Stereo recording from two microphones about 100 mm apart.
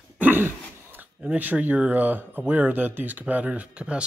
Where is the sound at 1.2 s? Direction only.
15° right (ahead or behind).